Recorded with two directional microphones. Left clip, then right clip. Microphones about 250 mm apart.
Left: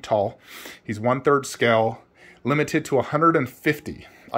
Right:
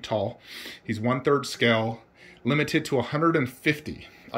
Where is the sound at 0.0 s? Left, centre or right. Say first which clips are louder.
Left 6 dB; centre.